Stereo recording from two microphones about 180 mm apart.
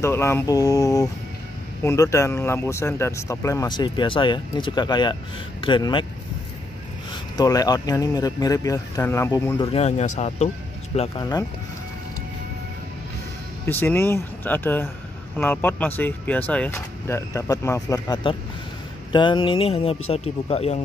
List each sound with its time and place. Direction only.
0.0 s speech: 15° left (ahead or behind)
7.3 s speech: 20° left (ahead or behind)
9.7 s speech: 35° left (ahead or behind)
11.0 s speech: 25° left (ahead or behind)
13.7 s speech: 10° left (ahead or behind); by 20.8 s 35° left (ahead or behind)